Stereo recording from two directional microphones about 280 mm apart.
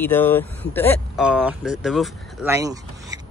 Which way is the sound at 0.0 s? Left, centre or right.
Centre.